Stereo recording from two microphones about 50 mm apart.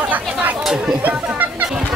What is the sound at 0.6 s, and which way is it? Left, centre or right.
Speech, centre.